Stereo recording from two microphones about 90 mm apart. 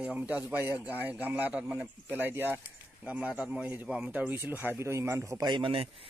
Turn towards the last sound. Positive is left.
turn(degrees=-90)